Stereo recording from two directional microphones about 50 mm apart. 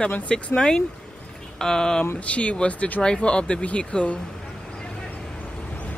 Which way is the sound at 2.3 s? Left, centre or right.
Left.